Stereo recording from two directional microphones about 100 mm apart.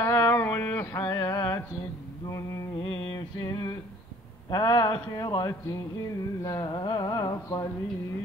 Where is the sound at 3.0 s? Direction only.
60° left (ahead or behind).